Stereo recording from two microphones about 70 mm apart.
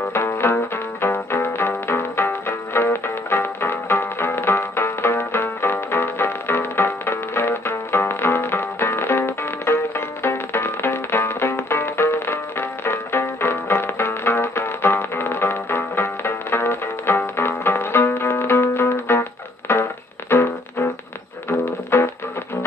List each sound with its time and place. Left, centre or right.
0.1 s music: left